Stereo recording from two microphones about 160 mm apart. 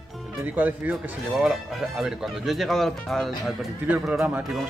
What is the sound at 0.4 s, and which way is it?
Speech, 10° right (ahead or behind).